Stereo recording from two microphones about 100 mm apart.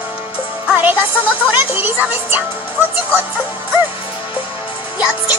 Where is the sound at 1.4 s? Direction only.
15° right (ahead or behind).